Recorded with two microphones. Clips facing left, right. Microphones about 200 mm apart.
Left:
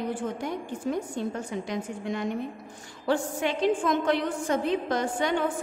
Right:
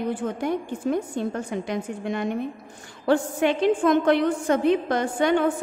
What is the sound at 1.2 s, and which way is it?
A woman's voice, 60° right (ahead or behind).